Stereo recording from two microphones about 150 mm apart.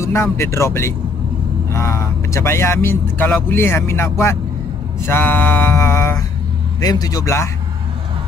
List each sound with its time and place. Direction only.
0.0 s a man's voice: 20° left (ahead or behind)